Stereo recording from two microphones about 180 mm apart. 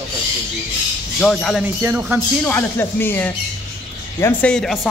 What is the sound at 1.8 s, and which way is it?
Speech, 10° right (ahead or behind).